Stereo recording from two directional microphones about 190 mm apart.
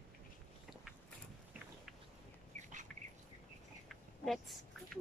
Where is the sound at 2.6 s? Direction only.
40° right (ahead or behind).